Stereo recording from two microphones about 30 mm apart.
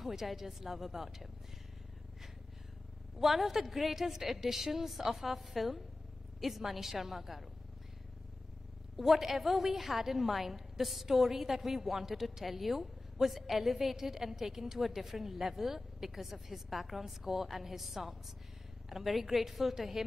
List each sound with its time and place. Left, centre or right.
0.0 s a woman's voice: centre
3.2 s a woman's voice: centre
8.9 s a woman's voice: centre